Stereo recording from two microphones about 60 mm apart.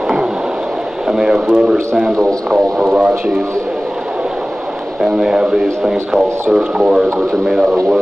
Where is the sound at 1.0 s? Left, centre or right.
Centre.